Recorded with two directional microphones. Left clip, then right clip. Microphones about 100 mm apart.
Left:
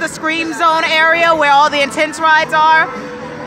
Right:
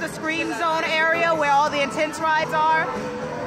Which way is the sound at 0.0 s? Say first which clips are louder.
Left 8 dB; 35° left (ahead or behind).